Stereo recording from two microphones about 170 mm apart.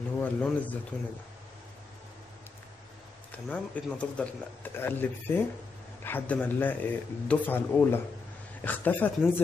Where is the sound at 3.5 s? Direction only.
5° left (ahead or behind).